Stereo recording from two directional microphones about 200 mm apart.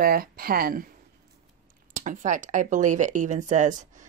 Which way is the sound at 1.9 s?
40° right (ahead or behind).